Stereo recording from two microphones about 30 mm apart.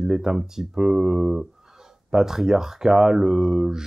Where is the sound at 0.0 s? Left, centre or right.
Centre.